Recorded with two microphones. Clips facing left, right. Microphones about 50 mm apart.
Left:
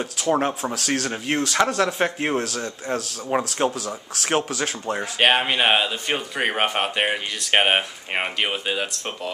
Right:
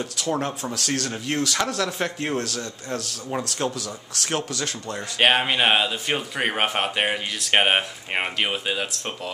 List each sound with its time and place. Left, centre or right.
0.0 s speech: centre
3.5 s speech: left; by 9.3 s centre